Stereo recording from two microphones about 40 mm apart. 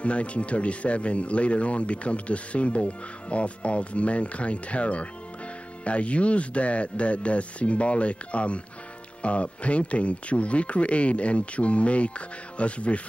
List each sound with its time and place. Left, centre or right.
0.0 s speech: left